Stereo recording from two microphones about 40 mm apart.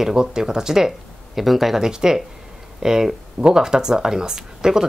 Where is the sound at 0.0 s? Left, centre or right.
Centre.